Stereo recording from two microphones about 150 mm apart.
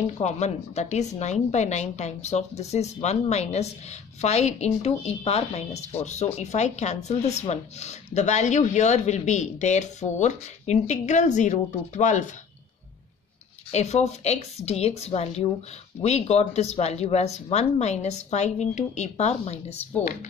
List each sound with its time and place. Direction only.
0.0 s speech: 50° left (ahead or behind)
13.7 s speech: 45° left (ahead or behind)